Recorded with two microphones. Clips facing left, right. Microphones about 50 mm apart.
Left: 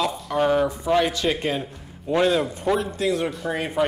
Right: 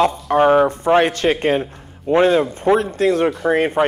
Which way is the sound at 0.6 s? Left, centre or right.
Right.